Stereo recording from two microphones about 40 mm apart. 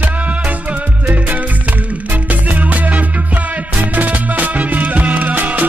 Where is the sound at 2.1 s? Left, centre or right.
Right.